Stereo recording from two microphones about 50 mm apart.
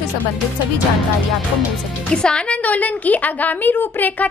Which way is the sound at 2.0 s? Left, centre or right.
Centre.